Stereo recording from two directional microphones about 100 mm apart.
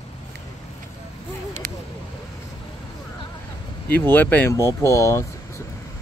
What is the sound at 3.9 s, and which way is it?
Speech, 15° left (ahead or behind).